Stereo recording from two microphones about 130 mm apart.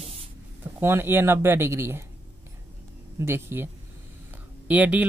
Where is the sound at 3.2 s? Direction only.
20° right (ahead or behind).